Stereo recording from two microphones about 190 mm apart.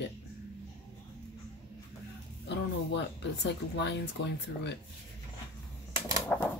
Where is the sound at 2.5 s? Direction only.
65° left (ahead or behind).